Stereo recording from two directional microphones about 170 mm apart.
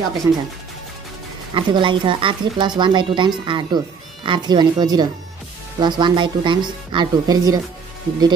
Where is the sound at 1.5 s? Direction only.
30° right (ahead or behind).